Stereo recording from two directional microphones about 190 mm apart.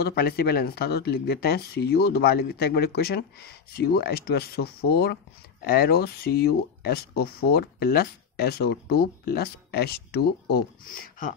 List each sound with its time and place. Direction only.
0.0 s speech: 55° left (ahead or behind)